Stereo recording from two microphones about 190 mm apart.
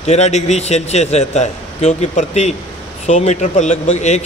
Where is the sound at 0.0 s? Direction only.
35° left (ahead or behind).